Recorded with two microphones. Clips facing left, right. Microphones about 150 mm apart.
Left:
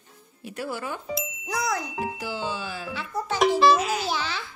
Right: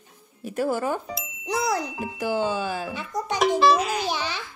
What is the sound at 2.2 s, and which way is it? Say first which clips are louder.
Speech: right 6 dB; 50° right (ahead or behind).